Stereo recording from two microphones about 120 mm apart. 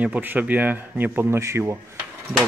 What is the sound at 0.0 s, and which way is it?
Speech, 15° right (ahead or behind).